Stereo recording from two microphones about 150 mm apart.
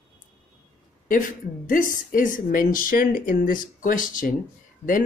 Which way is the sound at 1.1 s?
65° left (ahead or behind).